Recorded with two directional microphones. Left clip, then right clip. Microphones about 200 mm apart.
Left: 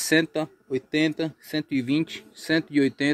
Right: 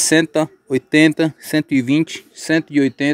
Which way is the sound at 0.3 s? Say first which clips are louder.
Right 10 dB; 35° right (ahead or behind).